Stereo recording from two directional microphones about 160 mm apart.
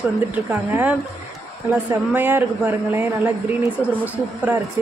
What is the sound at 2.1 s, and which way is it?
A woman's voice, 10° right (ahead or behind).